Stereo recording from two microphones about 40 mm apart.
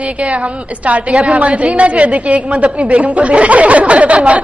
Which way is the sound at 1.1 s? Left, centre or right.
Centre.